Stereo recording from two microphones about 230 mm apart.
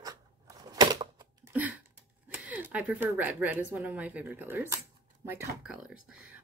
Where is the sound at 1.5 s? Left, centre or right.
Centre.